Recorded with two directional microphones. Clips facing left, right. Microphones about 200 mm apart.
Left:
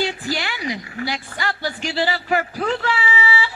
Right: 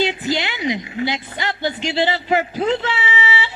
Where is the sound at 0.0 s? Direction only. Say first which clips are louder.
Right 4 dB; 20° right (ahead or behind).